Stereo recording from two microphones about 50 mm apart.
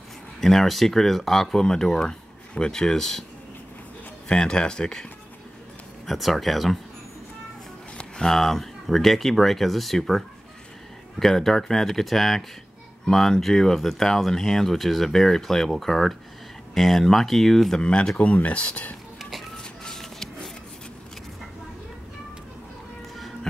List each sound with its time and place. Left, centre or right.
0.4 s speech: centre
4.3 s speech: centre
6.0 s speech: centre
8.0 s speech: centre
17.8 s speech: left
19.5 s a sound: centre